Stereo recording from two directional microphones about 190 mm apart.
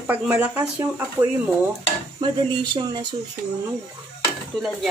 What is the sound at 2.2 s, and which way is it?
Speech, 20° right (ahead or behind).